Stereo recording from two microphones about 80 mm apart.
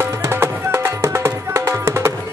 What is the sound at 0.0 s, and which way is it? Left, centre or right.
Music, right.